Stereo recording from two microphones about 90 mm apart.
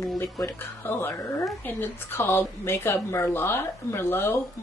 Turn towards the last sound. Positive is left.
turn(degrees=25)  # may be behind; listen again after turning